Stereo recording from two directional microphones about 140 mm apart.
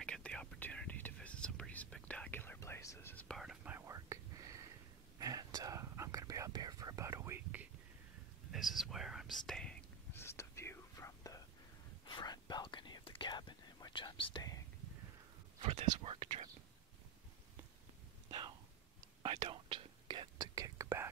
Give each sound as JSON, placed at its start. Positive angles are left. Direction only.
{"t": 0.0, "sound": "whispering", "side_deg": 5}
{"t": 3.3, "sound": "whispering", "side_deg": 0}
{"t": 3.6, "sound": "whispering", "side_deg": -20}
{"t": 8.5, "sound": "whispering", "side_deg": 0}
{"t": 10.1, "sound": "whispering", "side_deg": 20}
{"t": 15.6, "sound": "whispering", "side_deg": -50}
{"t": 19.4, "sound": "whispering", "side_deg": -35}